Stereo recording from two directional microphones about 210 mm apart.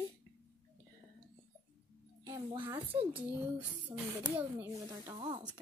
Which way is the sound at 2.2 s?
20° right (ahead or behind).